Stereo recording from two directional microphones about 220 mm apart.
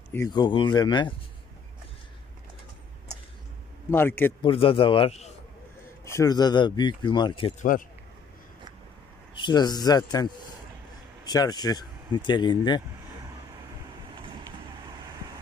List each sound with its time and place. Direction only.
0.1 s speech: 15° left (ahead or behind)
3.9 s a man's voice: 10° left (ahead or behind)
4.4 s speech: 25° left (ahead or behind)
6.0 s speech: 15° left (ahead or behind)
9.3 s speech: 20° left (ahead or behind)